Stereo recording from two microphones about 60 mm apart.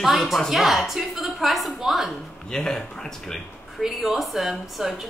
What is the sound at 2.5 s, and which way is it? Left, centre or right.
Speech, centre.